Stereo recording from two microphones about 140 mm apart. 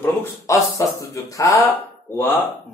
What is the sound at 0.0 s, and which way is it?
Speech, 20° left (ahead or behind).